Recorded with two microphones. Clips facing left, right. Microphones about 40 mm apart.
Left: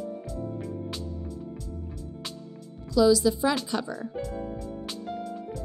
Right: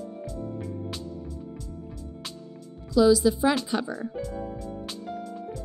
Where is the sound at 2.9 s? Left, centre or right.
Centre.